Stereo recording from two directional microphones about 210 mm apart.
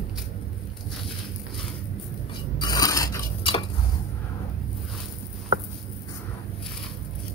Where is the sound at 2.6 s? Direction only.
20° left (ahead or behind).